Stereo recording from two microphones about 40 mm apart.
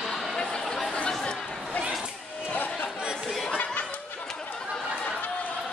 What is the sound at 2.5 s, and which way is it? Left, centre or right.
Chatter, left.